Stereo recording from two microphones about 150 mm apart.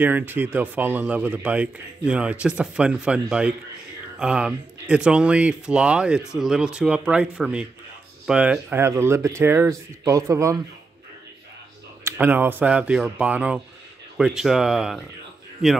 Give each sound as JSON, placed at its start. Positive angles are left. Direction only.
{"t": 0.0, "sound": "a man's voice", "side_deg": -10}
{"t": 12.0, "sound": "a man's voice", "side_deg": -15}